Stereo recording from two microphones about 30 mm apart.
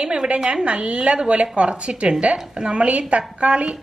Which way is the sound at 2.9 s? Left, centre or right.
Right.